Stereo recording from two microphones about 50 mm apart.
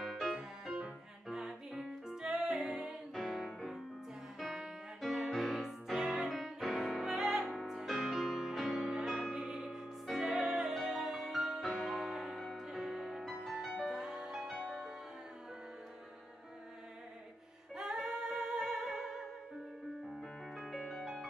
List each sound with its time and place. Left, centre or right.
0.0 s music: centre
1.3 s music: centre
3.2 s music: centre
5.0 s music: centre
5.9 s music: centre
6.2 s music: centre
9.1 s music: right
17.7 s music: centre